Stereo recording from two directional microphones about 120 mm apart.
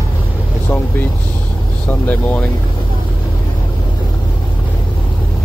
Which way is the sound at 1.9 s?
15° left (ahead or behind).